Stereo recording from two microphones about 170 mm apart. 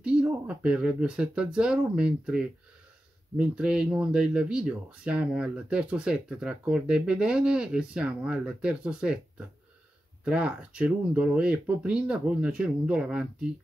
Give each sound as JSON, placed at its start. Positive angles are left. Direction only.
{"t": 0.0, "sound": "speech", "side_deg": -5}
{"t": 10.2, "sound": "speech", "side_deg": -5}